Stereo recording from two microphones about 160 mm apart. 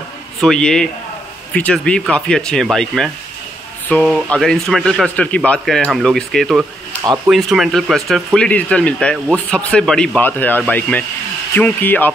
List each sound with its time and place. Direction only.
0.4 s speech: 5° left (ahead or behind)